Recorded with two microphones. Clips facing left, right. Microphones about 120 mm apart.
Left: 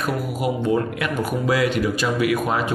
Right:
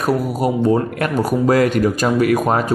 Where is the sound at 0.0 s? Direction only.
40° right (ahead or behind).